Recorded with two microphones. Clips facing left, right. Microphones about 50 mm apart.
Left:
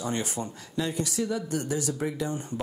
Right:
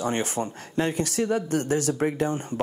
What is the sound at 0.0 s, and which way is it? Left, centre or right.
Speech, right.